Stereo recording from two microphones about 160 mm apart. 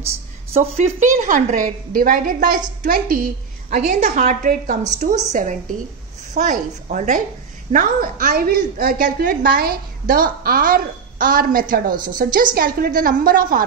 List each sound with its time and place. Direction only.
0.5 s speech: 40° right (ahead or behind)
0.9 s a woman's voice: 55° right (ahead or behind)
5.3 s a woman's voice: 50° right (ahead or behind)